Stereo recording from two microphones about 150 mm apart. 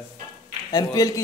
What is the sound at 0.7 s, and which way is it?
Speech, 25° left (ahead or behind).